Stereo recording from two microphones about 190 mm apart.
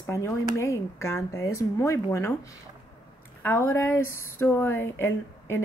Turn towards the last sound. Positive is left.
turn(degrees=10)  # may be behind; listen again after turning